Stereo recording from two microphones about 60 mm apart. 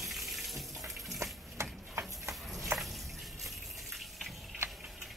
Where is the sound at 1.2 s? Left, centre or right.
Right.